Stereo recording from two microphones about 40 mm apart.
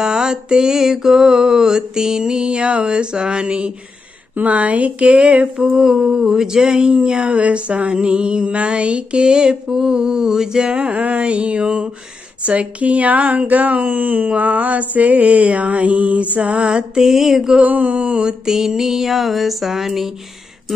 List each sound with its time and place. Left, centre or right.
0.0 s a sound: centre
4.4 s speech: right
5.7 s music: centre
6.7 s a sound: right
10.9 s speech: right
12.4 s speech: right
16.9 s music: centre
17.6 s speech: right
17.9 s a sound: right
18.4 s music: centre